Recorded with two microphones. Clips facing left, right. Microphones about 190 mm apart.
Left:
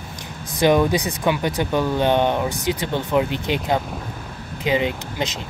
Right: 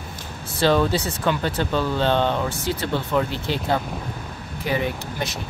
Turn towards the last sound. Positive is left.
turn(degrees=20)  # may be behind; listen again after turning